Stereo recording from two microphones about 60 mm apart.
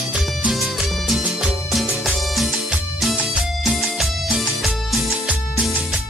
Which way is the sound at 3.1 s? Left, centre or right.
Centre.